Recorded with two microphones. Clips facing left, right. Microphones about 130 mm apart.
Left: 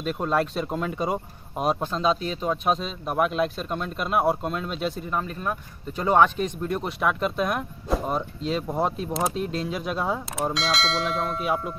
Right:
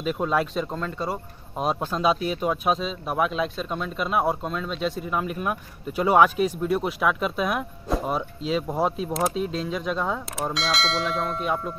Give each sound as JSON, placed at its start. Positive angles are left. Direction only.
{"t": 0.0, "sound": "speech", "side_deg": 0}
{"t": 0.7, "sound": "speech", "side_deg": 15}
{"t": 1.9, "sound": "speech", "side_deg": -10}
{"t": 5.2, "sound": "speech", "side_deg": -10}